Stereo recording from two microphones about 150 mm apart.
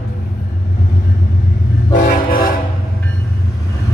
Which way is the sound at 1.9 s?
70° left (ahead or behind).